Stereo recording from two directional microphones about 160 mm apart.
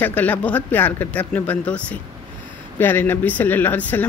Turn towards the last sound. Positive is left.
turn(degrees=10)  # may be behind; listen again after turning